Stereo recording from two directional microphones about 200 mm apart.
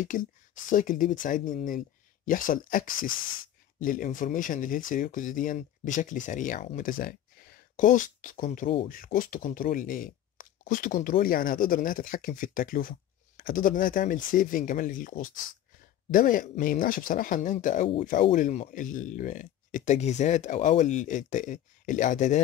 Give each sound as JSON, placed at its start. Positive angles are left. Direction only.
{"t": 0.0, "sound": "speech", "side_deg": 40}